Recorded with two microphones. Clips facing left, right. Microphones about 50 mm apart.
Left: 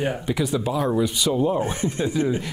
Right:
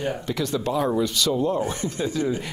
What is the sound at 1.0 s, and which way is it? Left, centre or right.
Speech, centre.